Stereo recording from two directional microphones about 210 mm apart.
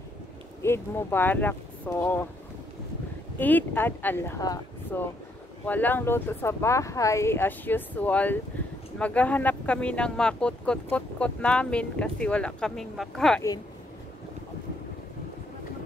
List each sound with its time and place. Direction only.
0.6 s speech: 10° left (ahead or behind)
3.3 s speech: 10° left (ahead or behind)